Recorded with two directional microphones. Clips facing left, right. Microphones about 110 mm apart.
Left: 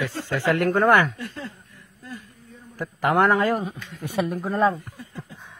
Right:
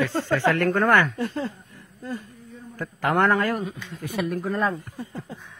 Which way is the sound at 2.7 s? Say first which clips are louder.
Left 2 dB; 5° left (ahead or behind).